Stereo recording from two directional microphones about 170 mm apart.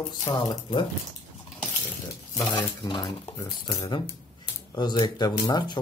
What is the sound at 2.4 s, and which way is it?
Speech, 20° left (ahead or behind).